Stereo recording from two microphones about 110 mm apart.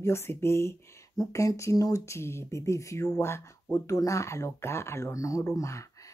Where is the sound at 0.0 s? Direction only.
25° left (ahead or behind).